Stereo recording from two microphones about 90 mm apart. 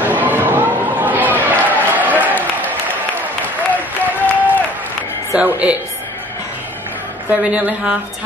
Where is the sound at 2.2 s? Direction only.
20° right (ahead or behind).